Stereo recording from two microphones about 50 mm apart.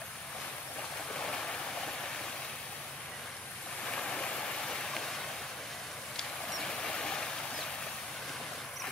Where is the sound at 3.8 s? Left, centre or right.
Centre.